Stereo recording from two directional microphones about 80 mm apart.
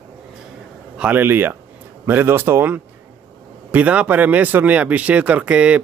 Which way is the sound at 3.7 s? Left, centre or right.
Centre.